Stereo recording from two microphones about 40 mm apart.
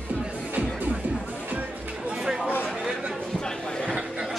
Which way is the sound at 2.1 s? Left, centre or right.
Centre.